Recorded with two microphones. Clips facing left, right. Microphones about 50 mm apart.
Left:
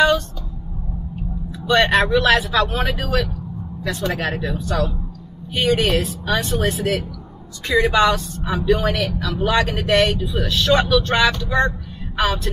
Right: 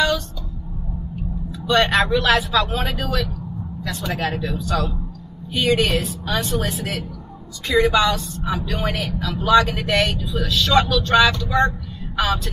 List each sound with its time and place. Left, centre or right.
1.7 s speech: left